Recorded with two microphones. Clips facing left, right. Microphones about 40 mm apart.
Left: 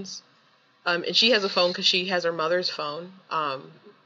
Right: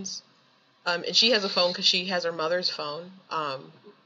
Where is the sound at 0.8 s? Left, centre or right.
Centre.